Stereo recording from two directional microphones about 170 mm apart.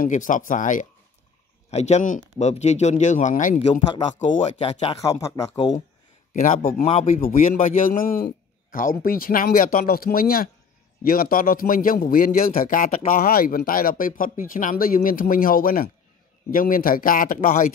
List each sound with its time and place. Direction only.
0.0 s a man's voice: 50° left (ahead or behind)
4.6 s speech: 35° left (ahead or behind)
5.2 s speech: 20° left (ahead or behind)
6.3 s a man's voice: 50° left (ahead or behind)